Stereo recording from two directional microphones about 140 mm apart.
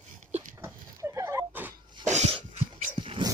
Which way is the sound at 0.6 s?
20° right (ahead or behind).